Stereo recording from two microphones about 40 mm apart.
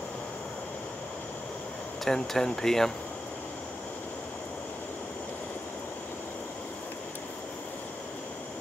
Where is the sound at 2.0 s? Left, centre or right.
Centre.